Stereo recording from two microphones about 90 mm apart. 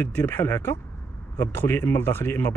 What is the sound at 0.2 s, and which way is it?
Speech, 30° left (ahead or behind).